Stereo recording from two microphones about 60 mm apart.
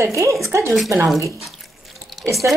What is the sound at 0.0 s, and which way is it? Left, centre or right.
A woman's voice, right.